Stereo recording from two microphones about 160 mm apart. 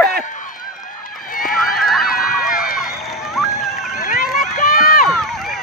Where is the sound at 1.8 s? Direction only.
Centre (ahead or behind).